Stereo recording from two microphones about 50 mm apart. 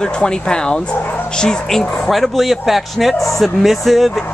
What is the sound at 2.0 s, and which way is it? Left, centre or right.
A man's voice, centre.